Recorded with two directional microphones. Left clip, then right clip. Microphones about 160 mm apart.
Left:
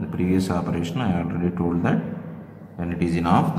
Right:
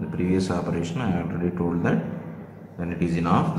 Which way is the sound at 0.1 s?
20° left (ahead or behind).